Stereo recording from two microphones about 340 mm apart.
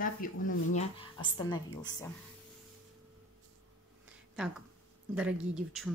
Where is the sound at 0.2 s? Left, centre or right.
Left.